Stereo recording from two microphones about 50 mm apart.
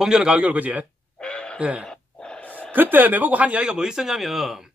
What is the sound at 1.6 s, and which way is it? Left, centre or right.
Speech, right.